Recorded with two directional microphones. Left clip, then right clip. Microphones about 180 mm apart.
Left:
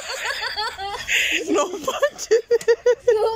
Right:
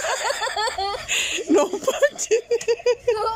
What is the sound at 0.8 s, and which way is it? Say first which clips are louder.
Chuckle: left 2 dB; 25° right (ahead or behind).